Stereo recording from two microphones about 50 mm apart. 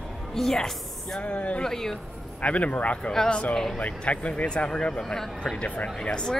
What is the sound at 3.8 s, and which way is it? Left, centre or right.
Speech, left.